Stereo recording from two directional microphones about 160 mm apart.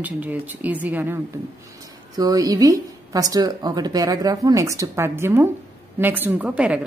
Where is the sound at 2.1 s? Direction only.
25° right (ahead or behind).